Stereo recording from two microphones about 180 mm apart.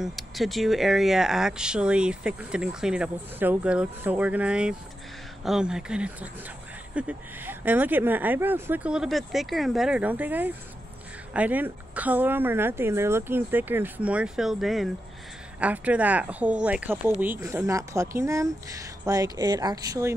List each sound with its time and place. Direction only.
0.0 s speech: centre (ahead or behind); by 20.1 s 20° right (ahead or behind)